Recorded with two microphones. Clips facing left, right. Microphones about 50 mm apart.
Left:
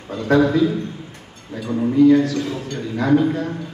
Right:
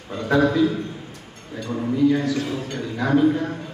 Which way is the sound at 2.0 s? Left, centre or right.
Centre.